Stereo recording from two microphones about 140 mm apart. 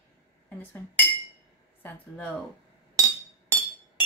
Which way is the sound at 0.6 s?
15° left (ahead or behind).